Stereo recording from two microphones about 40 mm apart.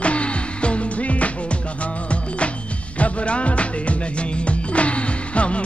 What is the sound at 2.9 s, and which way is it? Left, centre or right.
Music, left.